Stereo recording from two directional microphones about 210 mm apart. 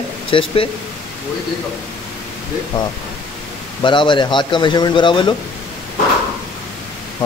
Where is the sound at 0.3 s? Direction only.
25° left (ahead or behind).